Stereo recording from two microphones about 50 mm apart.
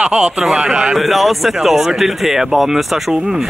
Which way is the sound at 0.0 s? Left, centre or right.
Right.